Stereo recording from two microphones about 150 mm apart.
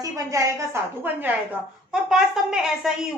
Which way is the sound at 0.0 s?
20° right (ahead or behind).